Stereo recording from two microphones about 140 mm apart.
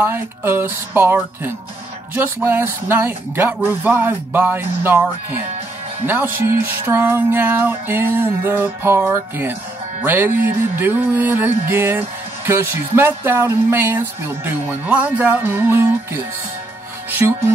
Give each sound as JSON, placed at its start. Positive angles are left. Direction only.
{"t": 0.0, "sound": "speech", "side_deg": -15}
{"t": 6.0, "sound": "speech", "side_deg": -15}
{"t": 17.2, "sound": "speech", "side_deg": -20}